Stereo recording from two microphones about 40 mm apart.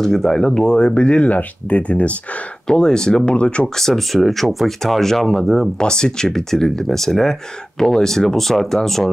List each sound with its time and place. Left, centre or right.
0.0 s speech: centre; by 2.1 s left
2.7 s speech: centre
3.6 s speech: centre
5.8 s speech: centre